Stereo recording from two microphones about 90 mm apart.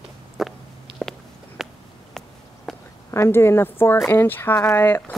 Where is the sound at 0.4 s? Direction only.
Centre (ahead or behind).